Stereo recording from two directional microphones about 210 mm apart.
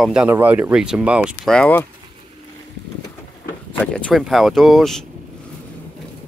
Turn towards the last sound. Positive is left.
turn(degrees=0)  # may be behind; listen again after turning